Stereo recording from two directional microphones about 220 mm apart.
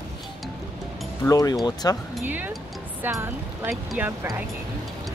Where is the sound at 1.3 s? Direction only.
15° left (ahead or behind).